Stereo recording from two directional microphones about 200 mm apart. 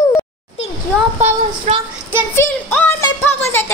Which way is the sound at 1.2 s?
35° right (ahead or behind).